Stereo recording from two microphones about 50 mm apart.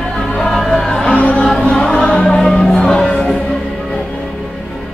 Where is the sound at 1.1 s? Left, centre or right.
Left; by 4.8 s centre.